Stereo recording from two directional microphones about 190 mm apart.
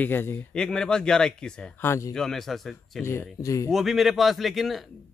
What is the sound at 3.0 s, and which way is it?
Speech, 15° left (ahead or behind).